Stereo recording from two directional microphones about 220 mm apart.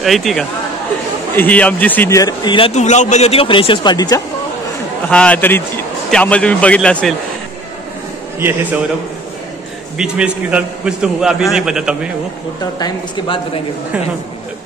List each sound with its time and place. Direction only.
0.0 s a man's voice: centre (ahead or behind); by 4.2 s 20° left (ahead or behind)
5.1 s a man's voice: 5° left (ahead or behind)
8.4 s a man's voice: 10° right (ahead or behind)
9.9 s a man's voice: 5° right (ahead or behind)
12.7 s a man's voice: 20° left (ahead or behind)